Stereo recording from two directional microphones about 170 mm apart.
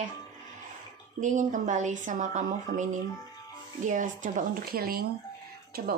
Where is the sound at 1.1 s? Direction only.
45° right (ahead or behind).